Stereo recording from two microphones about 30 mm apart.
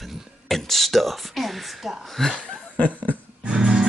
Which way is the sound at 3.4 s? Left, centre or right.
Right.